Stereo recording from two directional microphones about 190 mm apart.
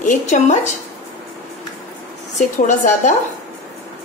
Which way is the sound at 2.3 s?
40° left (ahead or behind).